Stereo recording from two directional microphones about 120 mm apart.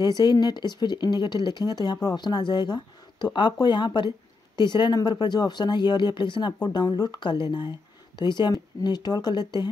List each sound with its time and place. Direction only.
0.2 s speech: 35° left (ahead or behind)